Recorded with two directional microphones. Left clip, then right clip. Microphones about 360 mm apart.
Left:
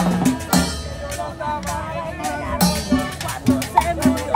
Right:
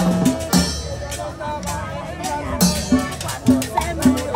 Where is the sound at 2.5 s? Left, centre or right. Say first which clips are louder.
Even; centre.